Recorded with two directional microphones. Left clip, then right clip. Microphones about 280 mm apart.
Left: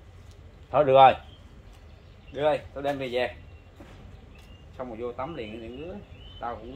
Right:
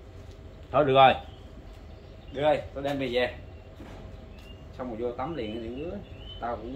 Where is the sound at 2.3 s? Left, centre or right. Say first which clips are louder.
Even; left.